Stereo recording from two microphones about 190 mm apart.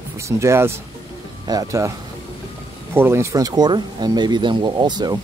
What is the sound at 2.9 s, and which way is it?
Speech, 10° right (ahead or behind).